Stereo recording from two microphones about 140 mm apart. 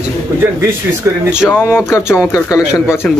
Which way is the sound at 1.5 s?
15° left (ahead or behind).